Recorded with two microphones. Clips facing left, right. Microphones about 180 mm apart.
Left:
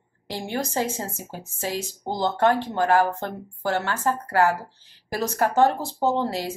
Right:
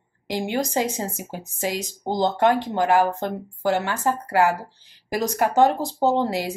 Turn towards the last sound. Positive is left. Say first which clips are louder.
# right 3 dB
turn(degrees=-15)  # may be behind; listen again after turning